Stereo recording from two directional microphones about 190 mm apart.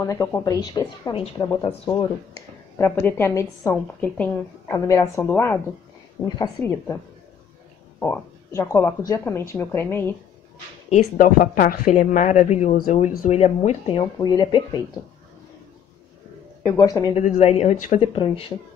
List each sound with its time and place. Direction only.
0.0 s a woman's voice: 15° left (ahead or behind)
2.8 s a woman's voice: 10° left (ahead or behind)
6.2 s a woman's voice: 20° left (ahead or behind)
8.0 s a woman's voice: 10° left (ahead or behind)
10.9 s a woman's voice: 40° left (ahead or behind); by 14.8 s 20° left (ahead or behind)
16.6 s a woman's voice: 20° left (ahead or behind)
17.1 s speech: 35° left (ahead or behind)
18.1 s a woman's voice: 30° left (ahead or behind)